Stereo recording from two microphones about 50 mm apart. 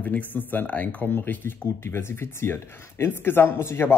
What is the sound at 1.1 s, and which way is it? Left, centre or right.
Speech, left.